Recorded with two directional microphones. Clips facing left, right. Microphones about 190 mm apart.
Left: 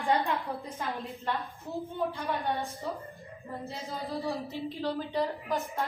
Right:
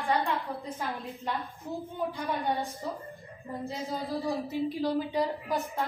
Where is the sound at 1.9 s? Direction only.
15° right (ahead or behind).